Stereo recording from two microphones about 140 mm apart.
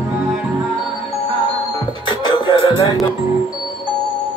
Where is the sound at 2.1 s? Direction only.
35° left (ahead or behind).